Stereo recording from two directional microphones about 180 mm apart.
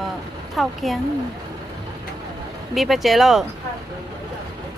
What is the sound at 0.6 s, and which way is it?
Speech, centre (ahead or behind).